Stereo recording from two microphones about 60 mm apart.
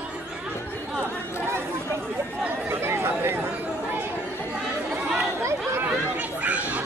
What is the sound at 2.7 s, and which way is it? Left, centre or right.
Chatter, right.